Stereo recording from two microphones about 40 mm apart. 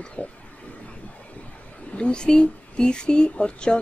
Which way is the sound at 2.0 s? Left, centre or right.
Left.